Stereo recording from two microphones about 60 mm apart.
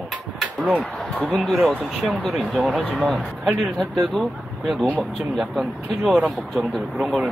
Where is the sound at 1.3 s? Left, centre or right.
Centre.